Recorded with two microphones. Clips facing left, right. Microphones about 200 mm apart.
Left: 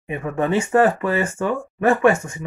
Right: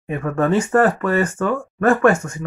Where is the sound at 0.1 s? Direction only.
20° left (ahead or behind).